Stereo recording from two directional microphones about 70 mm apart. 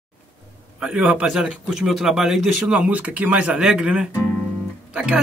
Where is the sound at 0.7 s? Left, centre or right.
Centre.